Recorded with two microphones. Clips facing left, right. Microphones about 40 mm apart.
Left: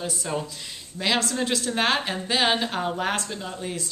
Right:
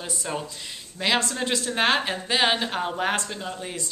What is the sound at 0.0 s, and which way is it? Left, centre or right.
A woman's voice, centre.